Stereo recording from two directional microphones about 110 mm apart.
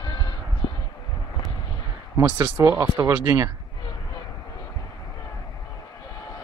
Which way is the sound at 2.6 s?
25° right (ahead or behind).